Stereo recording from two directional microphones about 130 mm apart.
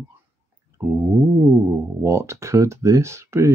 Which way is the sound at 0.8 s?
20° right (ahead or behind).